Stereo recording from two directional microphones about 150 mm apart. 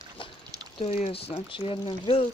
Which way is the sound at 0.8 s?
45° left (ahead or behind).